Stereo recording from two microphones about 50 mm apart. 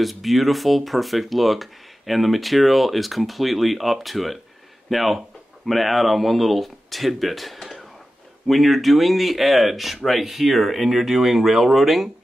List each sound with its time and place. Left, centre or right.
0.0 s speech: centre